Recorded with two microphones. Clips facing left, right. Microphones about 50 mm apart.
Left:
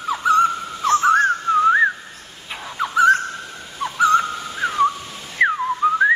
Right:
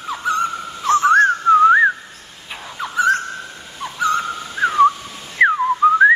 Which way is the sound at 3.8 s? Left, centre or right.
Centre.